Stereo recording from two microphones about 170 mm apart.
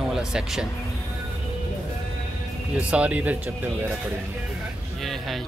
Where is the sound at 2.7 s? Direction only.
5° right (ahead or behind).